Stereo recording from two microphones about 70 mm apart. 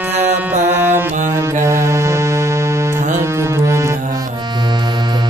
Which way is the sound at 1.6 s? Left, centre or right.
Right.